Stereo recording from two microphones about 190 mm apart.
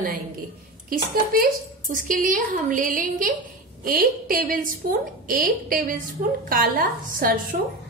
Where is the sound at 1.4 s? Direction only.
45° right (ahead or behind).